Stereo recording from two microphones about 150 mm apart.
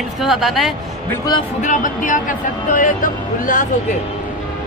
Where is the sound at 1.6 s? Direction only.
60° left (ahead or behind).